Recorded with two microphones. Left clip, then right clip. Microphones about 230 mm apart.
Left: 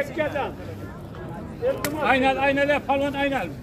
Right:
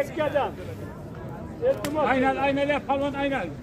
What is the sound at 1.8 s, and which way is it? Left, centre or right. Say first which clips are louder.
A man's voice: left 6 dB; left.